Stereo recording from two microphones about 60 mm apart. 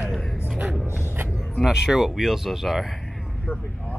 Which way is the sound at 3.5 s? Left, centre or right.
Left.